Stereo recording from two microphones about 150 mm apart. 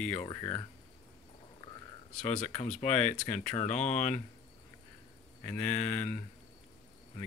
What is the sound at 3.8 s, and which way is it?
Speech, 55° left (ahead or behind).